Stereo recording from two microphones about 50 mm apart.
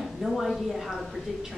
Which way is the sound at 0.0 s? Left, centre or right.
Centre.